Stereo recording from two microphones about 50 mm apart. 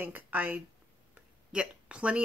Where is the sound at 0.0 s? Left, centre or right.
Right.